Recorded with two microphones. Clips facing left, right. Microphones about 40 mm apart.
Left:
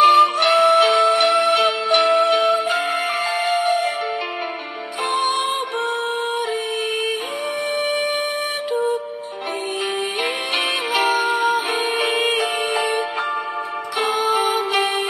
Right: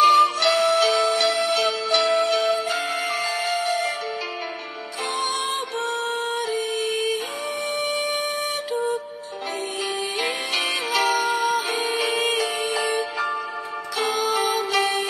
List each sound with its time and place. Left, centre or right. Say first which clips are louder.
0.0 s music: left 3 dB; centre
5.1 s music: left 5 dB; left
7.8 s music: left 4 dB; left
10.9 s music: left 2 dB; left